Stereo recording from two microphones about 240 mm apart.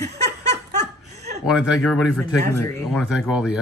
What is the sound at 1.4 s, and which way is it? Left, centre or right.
Speech, centre.